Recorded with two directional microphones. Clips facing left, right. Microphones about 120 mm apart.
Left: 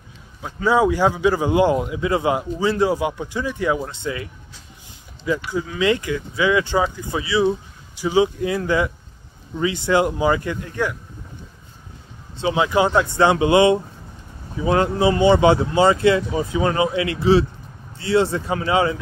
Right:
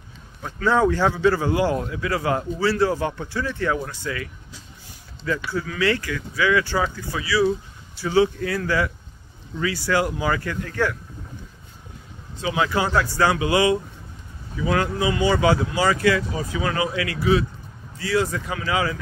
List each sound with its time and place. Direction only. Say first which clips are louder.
0.4 s a man's voice: left 2 dB; 10° left (ahead or behind)
12.4 s speech: left 4 dB; 25° left (ahead or behind)